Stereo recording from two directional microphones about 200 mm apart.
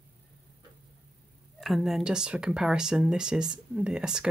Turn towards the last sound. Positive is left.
turn(degrees=-5)  # may be behind; listen again after turning